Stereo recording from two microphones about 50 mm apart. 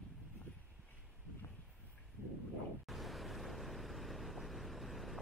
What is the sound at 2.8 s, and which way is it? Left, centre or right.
Vehicle, centre.